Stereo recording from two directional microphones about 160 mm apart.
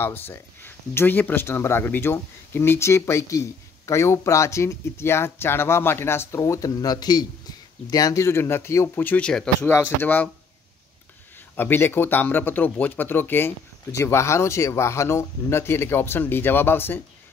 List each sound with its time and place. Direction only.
0.0 s speech: 15° left (ahead or behind)
11.5 s speech: 15° left (ahead or behind)